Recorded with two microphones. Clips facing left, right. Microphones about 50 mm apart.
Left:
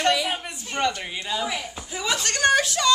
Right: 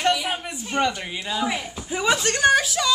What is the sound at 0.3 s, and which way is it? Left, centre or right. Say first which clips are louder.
A woman's voice: right 2 dB; centre.